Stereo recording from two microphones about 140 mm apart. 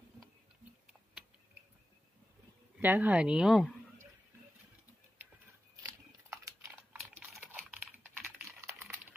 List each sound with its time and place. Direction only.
2.8 s a woman's voice: 10° right (ahead or behind)
5.8 s a sound: 25° right (ahead or behind)
7.2 s typing: 10° right (ahead or behind)